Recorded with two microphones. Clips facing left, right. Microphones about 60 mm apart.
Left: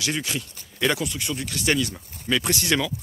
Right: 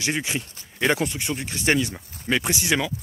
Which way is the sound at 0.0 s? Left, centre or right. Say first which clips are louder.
Right 1 dB; right.